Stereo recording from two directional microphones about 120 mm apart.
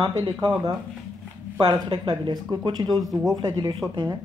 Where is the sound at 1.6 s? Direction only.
40° right (ahead or behind).